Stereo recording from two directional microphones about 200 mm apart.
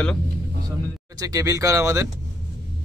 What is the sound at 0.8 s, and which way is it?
Speech, 15° right (ahead or behind).